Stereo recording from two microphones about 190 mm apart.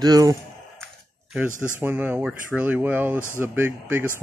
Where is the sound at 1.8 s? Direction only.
10° right (ahead or behind).